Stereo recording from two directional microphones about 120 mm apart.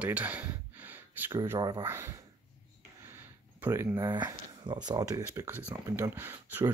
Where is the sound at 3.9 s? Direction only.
30° right (ahead or behind).